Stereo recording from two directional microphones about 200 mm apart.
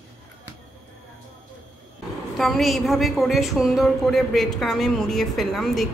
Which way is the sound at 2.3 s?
Centre (ahead or behind).